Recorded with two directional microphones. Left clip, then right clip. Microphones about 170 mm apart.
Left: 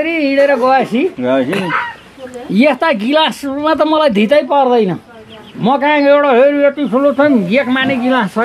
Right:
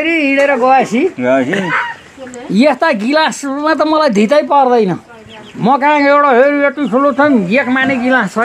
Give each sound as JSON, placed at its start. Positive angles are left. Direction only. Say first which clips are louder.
{"t": 0.0, "sound": "a man's voice", "louder": "even", "side_deg": -5}
{"t": 1.2, "sound": "speech", "louder": "right 2 dB", "side_deg": -35}
{"t": 2.5, "sound": "a man's voice", "louder": "right 1 dB", "side_deg": 5}